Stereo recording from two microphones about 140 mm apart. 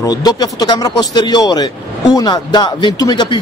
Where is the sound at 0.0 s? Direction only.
30° left (ahead or behind).